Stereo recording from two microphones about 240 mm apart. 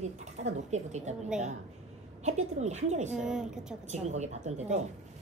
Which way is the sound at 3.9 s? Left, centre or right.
Right.